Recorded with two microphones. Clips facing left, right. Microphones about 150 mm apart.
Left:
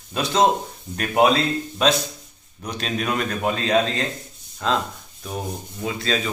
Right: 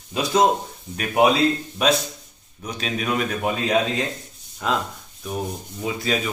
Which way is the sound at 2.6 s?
Centre (ahead or behind).